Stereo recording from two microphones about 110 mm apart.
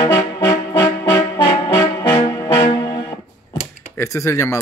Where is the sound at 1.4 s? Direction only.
45° left (ahead or behind).